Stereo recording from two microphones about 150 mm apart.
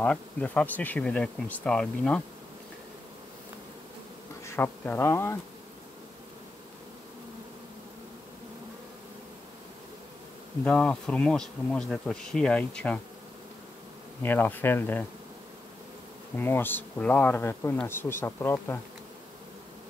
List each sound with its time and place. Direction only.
0.0 s bee: 10° left (ahead or behind)
4.5 s speech: 15° left (ahead or behind)
10.6 s bee: 10° left (ahead or behind)
14.2 s bee: 15° left (ahead or behind)
16.3 s bee: 15° left (ahead or behind)